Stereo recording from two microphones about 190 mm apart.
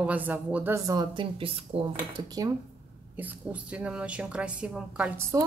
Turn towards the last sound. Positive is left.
turn(degrees=-10)  # may be behind; listen again after turning